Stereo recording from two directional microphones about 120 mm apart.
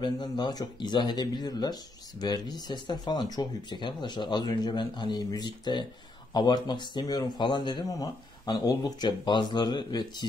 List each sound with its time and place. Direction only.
0.0 s speech: 35° left (ahead or behind)